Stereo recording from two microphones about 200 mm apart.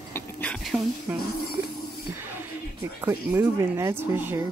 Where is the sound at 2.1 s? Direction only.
10° right (ahead or behind).